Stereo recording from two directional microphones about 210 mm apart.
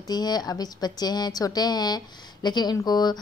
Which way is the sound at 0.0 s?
20° left (ahead or behind).